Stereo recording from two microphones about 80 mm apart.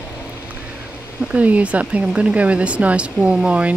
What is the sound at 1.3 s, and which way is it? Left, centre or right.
Speech, centre.